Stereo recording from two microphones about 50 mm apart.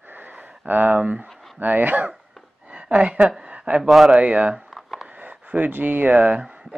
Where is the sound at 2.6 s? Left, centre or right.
Right.